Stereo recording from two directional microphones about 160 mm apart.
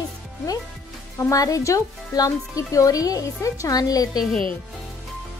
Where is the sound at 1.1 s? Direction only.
20° left (ahead or behind).